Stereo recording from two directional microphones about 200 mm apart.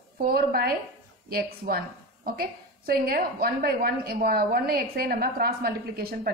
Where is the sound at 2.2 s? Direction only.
50° right (ahead or behind).